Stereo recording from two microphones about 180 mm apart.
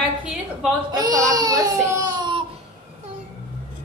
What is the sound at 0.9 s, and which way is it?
Speech, 20° right (ahead or behind).